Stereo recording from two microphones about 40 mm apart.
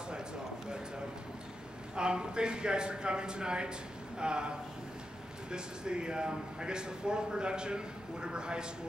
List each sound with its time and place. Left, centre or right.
2.0 s speech: right